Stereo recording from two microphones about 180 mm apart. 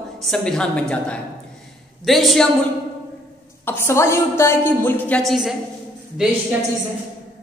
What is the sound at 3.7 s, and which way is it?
A woman's voice, 15° left (ahead or behind).